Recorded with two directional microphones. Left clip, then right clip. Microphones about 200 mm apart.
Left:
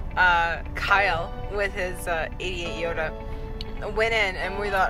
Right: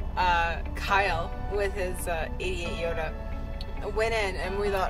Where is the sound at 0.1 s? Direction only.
10° right (ahead or behind).